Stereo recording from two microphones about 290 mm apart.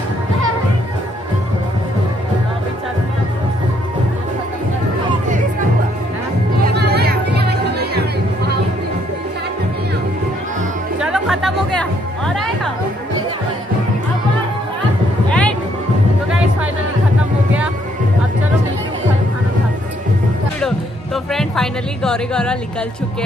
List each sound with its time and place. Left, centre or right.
6.6 s music: right
11.0 s music: centre
15.2 s music: centre
20.6 s music: centre